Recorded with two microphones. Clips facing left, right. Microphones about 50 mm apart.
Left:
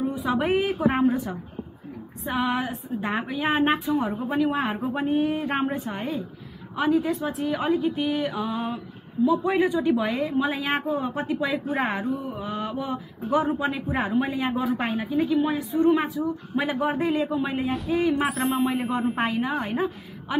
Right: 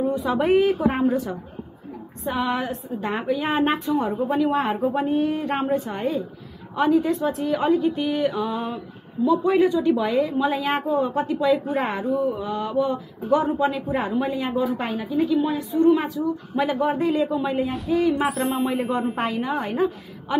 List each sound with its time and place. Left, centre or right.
0.1 s a woman's voice: centre
14.4 s a woman's voice: left
14.8 s a woman's voice: centre
15.2 s a woman's voice: left
16.0 s a woman's voice: centre
17.6 s a woman's voice: centre